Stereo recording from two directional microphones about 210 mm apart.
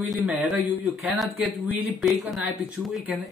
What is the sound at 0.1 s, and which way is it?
A man's voice, 5° right (ahead or behind).